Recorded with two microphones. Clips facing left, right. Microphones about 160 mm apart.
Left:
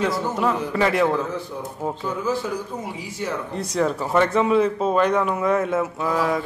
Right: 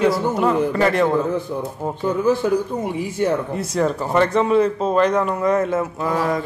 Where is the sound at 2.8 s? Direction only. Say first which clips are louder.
Right 8 dB; 55° right (ahead or behind).